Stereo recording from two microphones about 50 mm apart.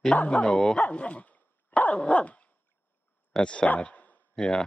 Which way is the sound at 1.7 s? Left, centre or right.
Left.